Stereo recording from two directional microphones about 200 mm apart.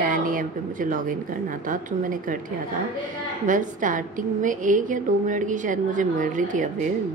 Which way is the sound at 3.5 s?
40° right (ahead or behind).